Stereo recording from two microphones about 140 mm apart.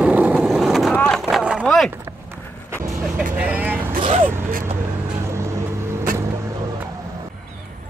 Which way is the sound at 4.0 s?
40° right (ahead or behind).